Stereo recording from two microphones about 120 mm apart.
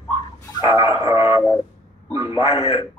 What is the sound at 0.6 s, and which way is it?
A man's voice, 45° left (ahead or behind).